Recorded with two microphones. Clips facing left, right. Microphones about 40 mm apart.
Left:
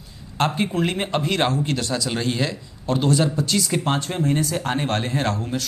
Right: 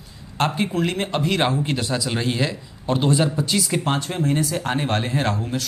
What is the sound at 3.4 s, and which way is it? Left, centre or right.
Speech, centre.